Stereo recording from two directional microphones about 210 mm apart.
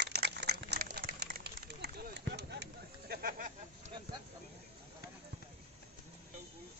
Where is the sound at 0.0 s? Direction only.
50° right (ahead or behind).